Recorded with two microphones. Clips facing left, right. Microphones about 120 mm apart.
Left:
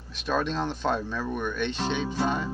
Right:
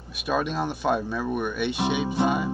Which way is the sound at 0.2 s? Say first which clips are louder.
Right 1 dB; 10° right (ahead or behind).